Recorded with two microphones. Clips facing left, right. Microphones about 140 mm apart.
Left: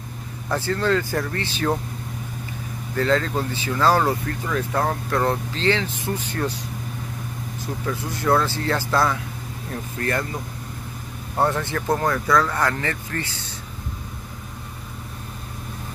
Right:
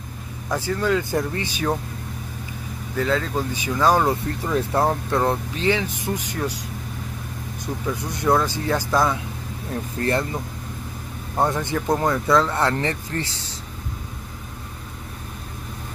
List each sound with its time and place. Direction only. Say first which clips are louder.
0.5 s speech: even; 10° right (ahead or behind)
3.0 s speech: left 1 dB; 5° right (ahead or behind)
7.6 s speech: right 1 dB; 20° right (ahead or behind)
9.9 s speech: right 3 dB; 25° right (ahead or behind)
11.4 s speech: even; 15° right (ahead or behind)